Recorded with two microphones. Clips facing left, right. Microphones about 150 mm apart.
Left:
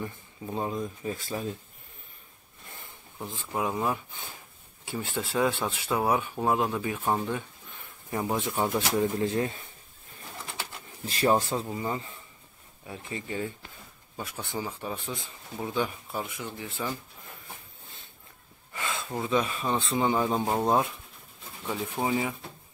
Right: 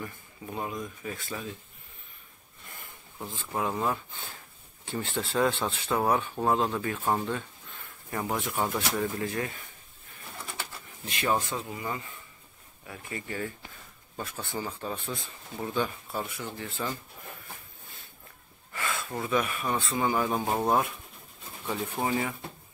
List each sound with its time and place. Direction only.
0.0 s speech: 25° left (ahead or behind)
3.2 s speech: 15° left (ahead or behind)
11.1 s speech: 35° left (ahead or behind)
14.1 s speech: 10° left (ahead or behind)
18.7 s speech: 20° left (ahead or behind)
21.9 s speech: 10° left (ahead or behind)